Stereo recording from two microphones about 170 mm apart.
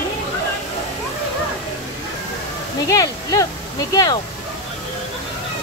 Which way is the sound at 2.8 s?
20° left (ahead or behind).